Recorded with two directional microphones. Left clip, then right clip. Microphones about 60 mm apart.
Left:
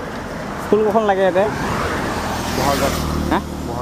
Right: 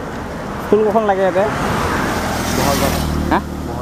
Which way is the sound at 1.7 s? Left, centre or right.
Right.